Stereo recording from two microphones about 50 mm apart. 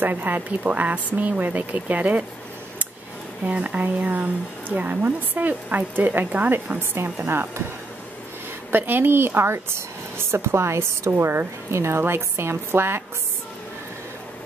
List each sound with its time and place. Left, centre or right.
0.0 s speech: right
3.4 s speech: right
7.2 s speech: right
8.7 s speech: right